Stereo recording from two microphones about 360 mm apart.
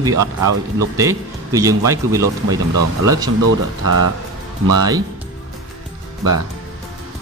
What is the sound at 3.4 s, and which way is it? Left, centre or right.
Speech, right.